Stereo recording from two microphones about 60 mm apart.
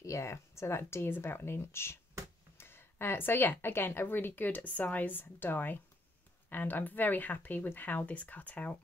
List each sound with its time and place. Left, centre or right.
0.0 s speech: left